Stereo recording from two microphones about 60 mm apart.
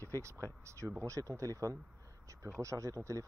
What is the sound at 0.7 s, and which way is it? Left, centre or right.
Speech, right.